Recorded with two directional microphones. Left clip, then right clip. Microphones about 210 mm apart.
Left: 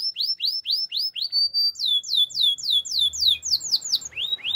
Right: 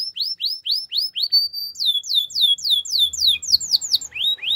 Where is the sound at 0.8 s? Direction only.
15° right (ahead or behind).